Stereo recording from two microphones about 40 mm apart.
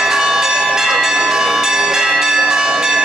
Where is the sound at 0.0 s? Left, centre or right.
Centre.